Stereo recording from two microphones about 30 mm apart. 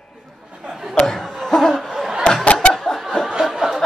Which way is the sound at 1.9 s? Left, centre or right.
Centre.